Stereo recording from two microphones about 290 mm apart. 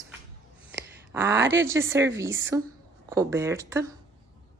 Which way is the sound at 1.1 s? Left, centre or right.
Centre.